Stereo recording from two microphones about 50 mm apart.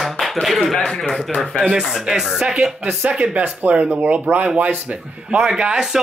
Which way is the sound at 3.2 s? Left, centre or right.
Right.